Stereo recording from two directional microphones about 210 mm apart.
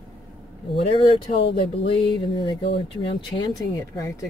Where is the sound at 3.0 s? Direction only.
25° left (ahead or behind).